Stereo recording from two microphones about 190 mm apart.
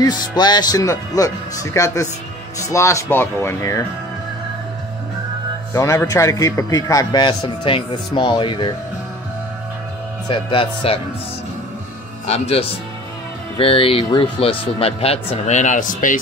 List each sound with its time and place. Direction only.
0.0 s a man's voice: 20° left (ahead or behind)
5.7 s a man's voice: 15° left (ahead or behind)
10.2 s a man's voice: 25° left (ahead or behind)
12.3 s speech: 30° left (ahead or behind)